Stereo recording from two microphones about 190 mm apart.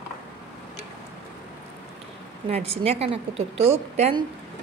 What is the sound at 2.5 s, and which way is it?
A woman's voice, 30° right (ahead or behind).